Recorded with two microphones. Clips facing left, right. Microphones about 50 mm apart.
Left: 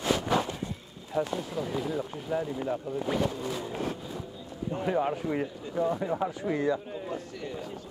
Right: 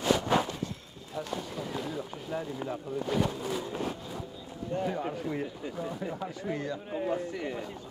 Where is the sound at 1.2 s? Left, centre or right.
Left.